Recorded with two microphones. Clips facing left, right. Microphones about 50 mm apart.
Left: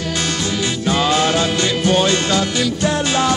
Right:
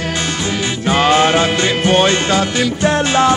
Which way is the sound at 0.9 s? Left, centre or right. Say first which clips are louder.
Right 5 dB; right.